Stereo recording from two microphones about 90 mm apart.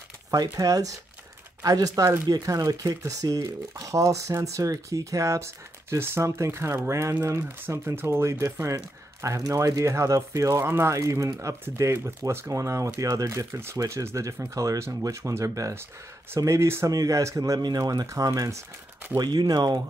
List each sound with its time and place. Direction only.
0.3 s speech: 40° right (ahead or behind)
19.1 s speech: 50° right (ahead or behind)